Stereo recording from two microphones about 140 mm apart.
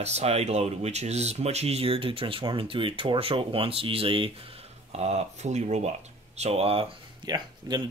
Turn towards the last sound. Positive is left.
turn(degrees=-30)  # may be behind; listen again after turning